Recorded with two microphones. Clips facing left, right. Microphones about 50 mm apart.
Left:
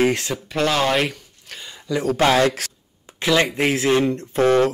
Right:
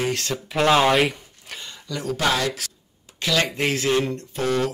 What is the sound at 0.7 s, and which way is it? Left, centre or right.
Speech, centre.